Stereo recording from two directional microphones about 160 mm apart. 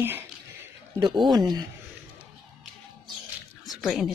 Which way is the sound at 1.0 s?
30° right (ahead or behind).